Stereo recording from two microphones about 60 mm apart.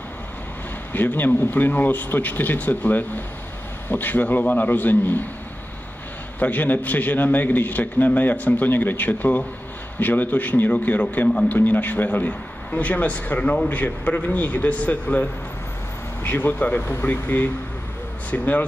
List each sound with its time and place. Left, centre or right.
0.9 s speech: left
6.4 s a man's voice: left
16.2 s a man's voice: left